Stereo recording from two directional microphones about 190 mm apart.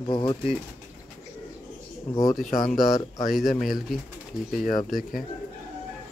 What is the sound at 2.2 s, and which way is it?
Speech, centre (ahead or behind).